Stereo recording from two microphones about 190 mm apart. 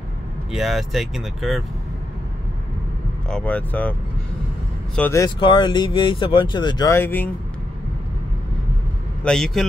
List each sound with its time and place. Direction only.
0.5 s speech: centre (ahead or behind)
3.3 s speech: 5° left (ahead or behind)
4.9 s speech: 10° left (ahead or behind)
5.2 s speech: 25° left (ahead or behind)
9.2 s speech: 5° left (ahead or behind)